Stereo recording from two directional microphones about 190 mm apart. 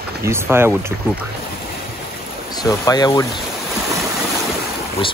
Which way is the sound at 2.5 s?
20° left (ahead or behind).